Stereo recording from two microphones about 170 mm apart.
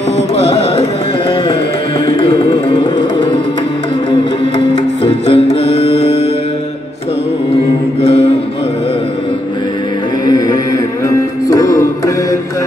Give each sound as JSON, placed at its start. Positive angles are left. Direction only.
{"t": 2.3, "sound": "music", "side_deg": 25}
{"t": 5.2, "sound": "music", "side_deg": 35}
{"t": 10.2, "sound": "music", "side_deg": 25}